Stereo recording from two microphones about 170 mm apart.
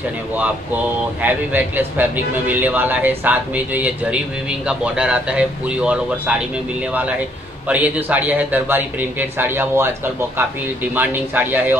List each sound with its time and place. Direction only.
1.2 s a man's voice: 10° right (ahead or behind)
11.0 s a man's voice: 10° right (ahead or behind)